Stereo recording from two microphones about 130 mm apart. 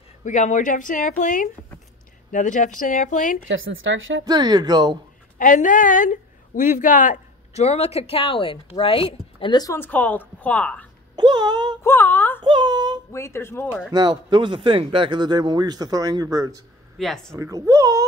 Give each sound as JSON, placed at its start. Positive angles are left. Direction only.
{"t": 0.2, "sound": "speech", "side_deg": 65}
{"t": 4.2, "sound": "speech", "side_deg": -30}
{"t": 5.4, "sound": "a woman's voice", "side_deg": 85}
{"t": 9.8, "sound": "a woman's voice", "side_deg": 10}
{"t": 11.1, "sound": "speech", "side_deg": -35}
{"t": 11.8, "sound": "speech", "side_deg": 15}
{"t": 12.4, "sound": "a sound", "side_deg": -35}
{"t": 13.1, "sound": "speech", "side_deg": 20}
{"t": 13.9, "sound": "speech", "side_deg": -35}